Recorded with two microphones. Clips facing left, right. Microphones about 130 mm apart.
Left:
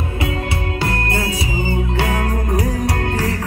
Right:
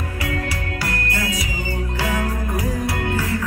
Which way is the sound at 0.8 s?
30° left (ahead or behind).